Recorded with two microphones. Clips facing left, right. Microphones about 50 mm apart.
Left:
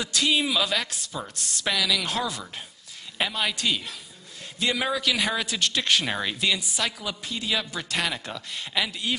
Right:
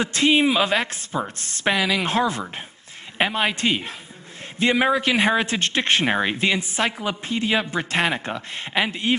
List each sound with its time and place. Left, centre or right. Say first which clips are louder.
0.0 s speech: right 6 dB; right